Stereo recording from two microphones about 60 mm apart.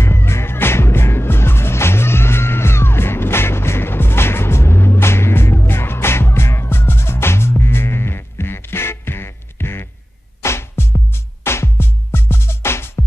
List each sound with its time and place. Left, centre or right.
0.0 s music: left